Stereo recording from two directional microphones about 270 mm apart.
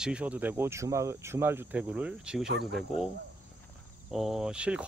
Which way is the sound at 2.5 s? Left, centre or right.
Right.